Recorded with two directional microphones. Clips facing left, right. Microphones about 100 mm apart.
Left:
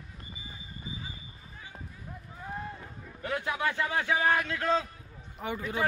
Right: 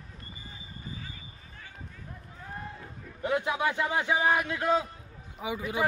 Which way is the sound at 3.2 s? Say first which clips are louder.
Right 4 dB; 20° right (ahead or behind).